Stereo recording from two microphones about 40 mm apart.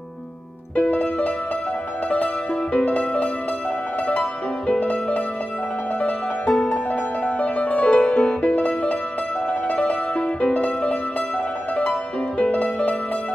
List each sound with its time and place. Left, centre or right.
0.7 s music: left
2.7 s music: left